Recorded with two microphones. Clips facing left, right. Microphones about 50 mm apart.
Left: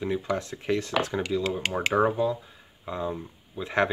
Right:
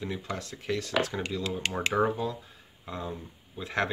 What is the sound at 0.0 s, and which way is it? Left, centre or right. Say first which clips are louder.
Speech: left 7 dB; left.